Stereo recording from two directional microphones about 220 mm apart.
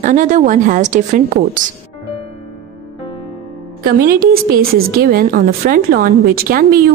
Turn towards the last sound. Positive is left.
turn(degrees=-40)  # may be behind; listen again after turning